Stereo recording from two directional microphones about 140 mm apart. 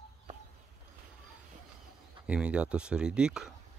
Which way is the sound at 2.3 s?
10° right (ahead or behind).